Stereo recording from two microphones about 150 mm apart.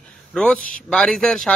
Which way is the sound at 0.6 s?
70° left (ahead or behind).